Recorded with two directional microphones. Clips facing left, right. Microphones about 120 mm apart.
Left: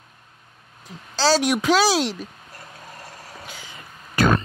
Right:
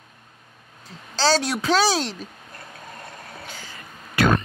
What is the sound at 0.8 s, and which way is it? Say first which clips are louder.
Speech: left 1 dB; 5° left (ahead or behind).